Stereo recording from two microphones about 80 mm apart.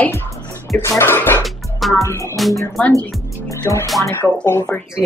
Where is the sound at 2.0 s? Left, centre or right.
Left.